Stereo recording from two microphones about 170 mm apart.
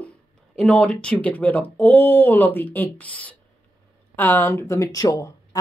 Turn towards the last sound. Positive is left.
turn(degrees=20)  # may be behind; listen again after turning